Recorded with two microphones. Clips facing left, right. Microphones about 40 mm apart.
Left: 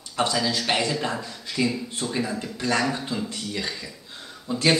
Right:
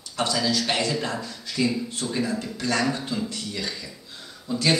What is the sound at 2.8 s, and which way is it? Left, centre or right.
A man's voice, centre.